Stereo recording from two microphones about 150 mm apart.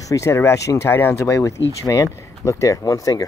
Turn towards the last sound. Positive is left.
turn(degrees=25)  # may be behind; listen again after turning